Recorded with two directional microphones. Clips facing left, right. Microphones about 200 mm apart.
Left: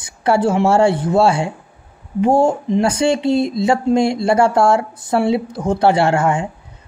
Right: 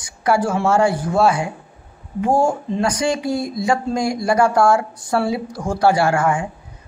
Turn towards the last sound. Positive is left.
turn(degrees=25)  # may be behind; listen again after turning